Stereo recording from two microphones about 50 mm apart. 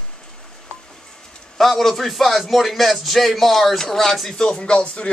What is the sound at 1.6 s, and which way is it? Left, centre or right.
Speech, centre.